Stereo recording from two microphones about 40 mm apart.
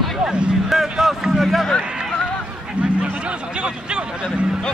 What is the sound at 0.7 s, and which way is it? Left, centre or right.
Speech, centre.